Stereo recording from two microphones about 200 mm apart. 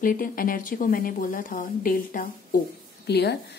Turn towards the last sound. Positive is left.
turn(degrees=55)  # may be behind; listen again after turning